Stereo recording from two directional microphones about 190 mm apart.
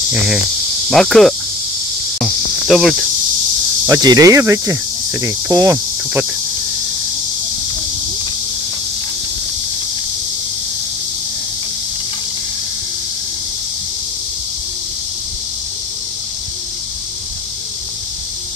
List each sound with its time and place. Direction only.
0.8 s cricket: centre (ahead or behind)
3.8 s cricket: 20° right (ahead or behind)